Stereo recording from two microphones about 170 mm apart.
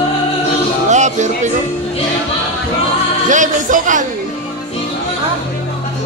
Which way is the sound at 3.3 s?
50° right (ahead or behind).